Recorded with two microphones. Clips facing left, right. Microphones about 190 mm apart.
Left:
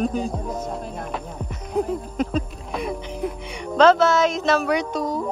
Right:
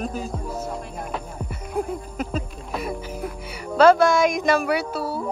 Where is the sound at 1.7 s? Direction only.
5° right (ahead or behind).